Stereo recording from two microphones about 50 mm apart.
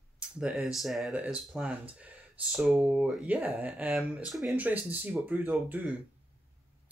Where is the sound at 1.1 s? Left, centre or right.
Right.